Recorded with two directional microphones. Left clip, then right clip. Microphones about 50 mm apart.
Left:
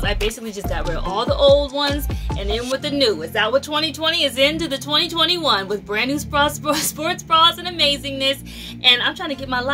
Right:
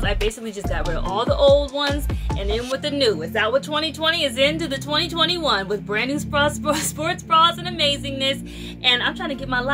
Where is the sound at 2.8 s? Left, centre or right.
Left.